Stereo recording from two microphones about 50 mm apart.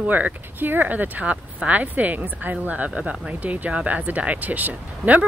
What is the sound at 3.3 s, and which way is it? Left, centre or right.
Speech, right.